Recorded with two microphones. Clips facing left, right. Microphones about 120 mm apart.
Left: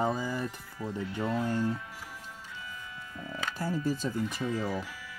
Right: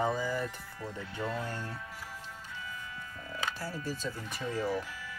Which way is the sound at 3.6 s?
20° left (ahead or behind).